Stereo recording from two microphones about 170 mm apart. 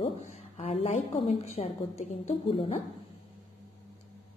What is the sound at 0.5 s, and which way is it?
A woman's voice, 35° left (ahead or behind).